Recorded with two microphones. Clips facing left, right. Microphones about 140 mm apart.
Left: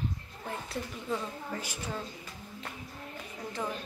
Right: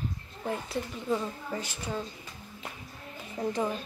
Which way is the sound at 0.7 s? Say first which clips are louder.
Right 3 dB; 5° right (ahead or behind).